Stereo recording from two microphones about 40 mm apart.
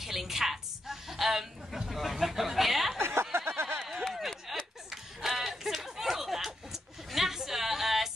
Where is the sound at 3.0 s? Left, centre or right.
Right.